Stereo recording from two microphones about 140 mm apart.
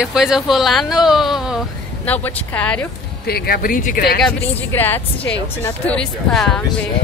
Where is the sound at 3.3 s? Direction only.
90° left.